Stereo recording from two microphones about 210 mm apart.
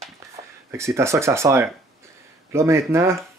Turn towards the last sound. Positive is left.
turn(degrees=-15)  # may be behind; listen again after turning